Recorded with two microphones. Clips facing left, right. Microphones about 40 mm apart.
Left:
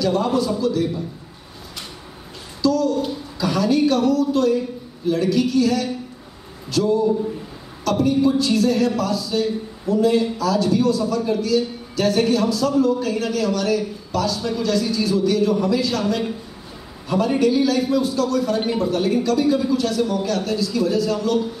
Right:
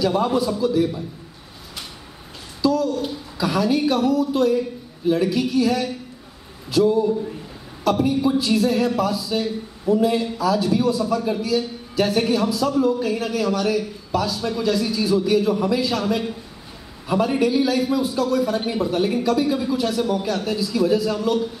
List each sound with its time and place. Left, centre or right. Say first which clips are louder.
0.0 s a man's voice: even; centre
2.6 s a man's voice: left 1 dB; centre